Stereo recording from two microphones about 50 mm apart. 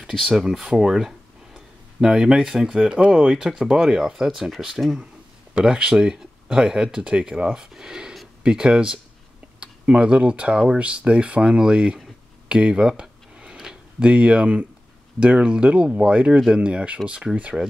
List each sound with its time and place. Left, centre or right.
0.4 s speech: centre
5.5 s speech: centre
12.4 s tick-tock: centre
13.9 s speech: right